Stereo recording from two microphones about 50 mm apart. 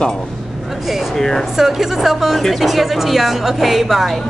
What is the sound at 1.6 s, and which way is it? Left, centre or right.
A woman's voice, centre.